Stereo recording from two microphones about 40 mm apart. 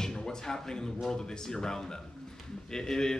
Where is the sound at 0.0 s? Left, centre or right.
Centre.